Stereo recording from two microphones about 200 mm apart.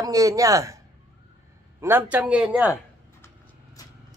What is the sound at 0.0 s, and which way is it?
Speech, 15° right (ahead or behind).